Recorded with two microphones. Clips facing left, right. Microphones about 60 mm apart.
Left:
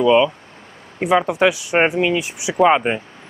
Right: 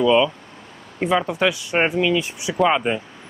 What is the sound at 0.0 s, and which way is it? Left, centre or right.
Speech, centre.